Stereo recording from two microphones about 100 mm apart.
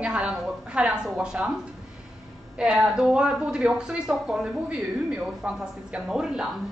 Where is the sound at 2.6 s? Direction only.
10° right (ahead or behind).